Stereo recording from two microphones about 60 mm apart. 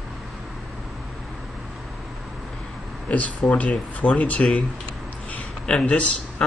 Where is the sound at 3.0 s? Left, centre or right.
Left.